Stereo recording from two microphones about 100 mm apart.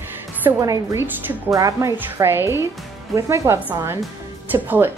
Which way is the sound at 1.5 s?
35° right (ahead or behind).